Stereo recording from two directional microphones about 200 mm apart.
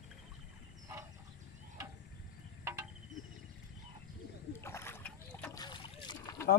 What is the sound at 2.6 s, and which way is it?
Insect, 15° right (ahead or behind).